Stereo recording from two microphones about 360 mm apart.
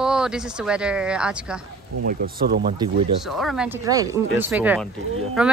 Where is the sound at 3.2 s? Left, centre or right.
Centre.